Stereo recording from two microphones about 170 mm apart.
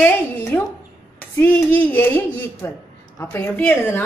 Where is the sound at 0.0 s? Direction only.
15° left (ahead or behind).